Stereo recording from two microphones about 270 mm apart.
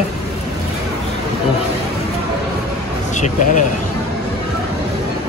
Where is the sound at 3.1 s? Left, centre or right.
Left.